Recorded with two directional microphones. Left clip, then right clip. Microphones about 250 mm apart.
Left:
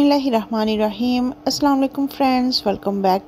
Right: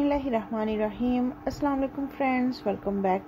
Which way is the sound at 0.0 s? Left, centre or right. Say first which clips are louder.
Left 9 dB; left.